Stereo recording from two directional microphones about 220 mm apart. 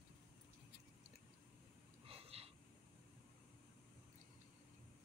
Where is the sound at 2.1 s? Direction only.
25° right (ahead or behind).